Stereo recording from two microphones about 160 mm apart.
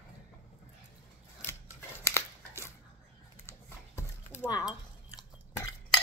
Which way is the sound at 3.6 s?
15° left (ahead or behind).